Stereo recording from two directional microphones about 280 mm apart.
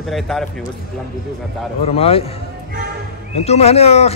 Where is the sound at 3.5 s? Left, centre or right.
Left.